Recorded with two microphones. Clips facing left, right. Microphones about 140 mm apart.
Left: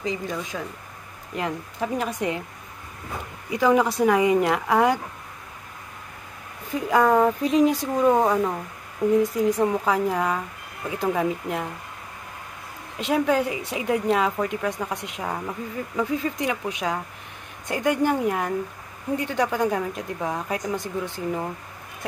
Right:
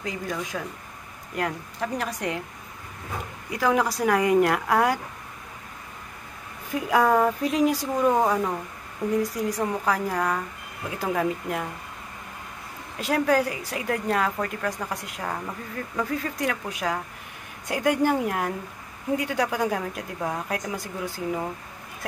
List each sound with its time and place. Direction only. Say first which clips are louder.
0.0 s speech: left 2 dB; 5° right (ahead or behind)
3.4 s speech: left 4 dB; centre (ahead or behind)
6.7 s speech: left 2 dB; 5° right (ahead or behind)
12.9 s speech: left 1 dB; centre (ahead or behind)